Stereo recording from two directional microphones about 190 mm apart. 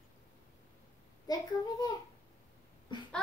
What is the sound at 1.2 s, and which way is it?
Speech, 20° left (ahead or behind).